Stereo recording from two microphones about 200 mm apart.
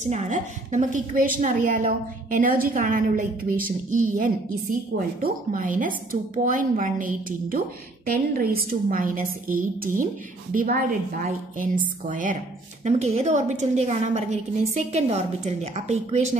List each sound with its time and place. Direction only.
0.0 s a woman's voice: 35° right (ahead or behind)